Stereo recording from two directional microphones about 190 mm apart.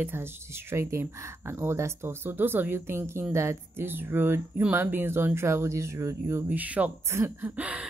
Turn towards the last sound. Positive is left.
turn(degrees=-5)  # may be behind; listen again after turning